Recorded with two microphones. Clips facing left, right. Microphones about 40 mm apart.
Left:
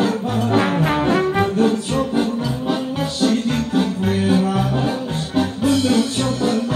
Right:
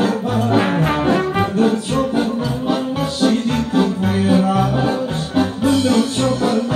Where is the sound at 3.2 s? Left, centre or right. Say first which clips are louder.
Right 2 dB; centre.